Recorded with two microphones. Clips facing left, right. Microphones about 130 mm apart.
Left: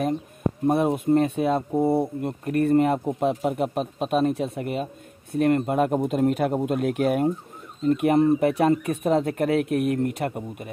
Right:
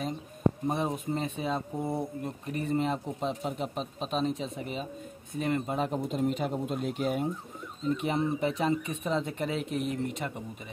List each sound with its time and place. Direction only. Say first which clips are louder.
0.7 s speech: left 10 dB; 60° left (ahead or behind)
1.8 s speech: left 14 dB; 30° left (ahead or behind)
2.2 s speech: left 10 dB; 60° left (ahead or behind)